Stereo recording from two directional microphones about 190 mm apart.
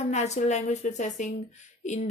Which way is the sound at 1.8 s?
40° left (ahead or behind).